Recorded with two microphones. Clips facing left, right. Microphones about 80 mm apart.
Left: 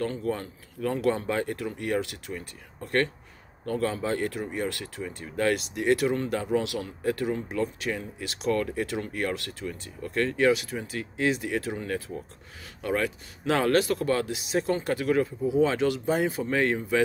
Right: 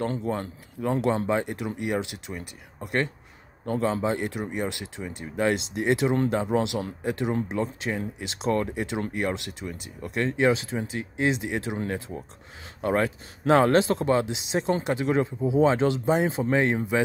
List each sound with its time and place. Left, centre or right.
0.0 s speech: right
12.8 s speech: right